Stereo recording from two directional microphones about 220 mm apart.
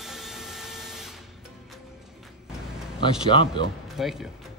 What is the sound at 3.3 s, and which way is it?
Speech, 20° left (ahead or behind).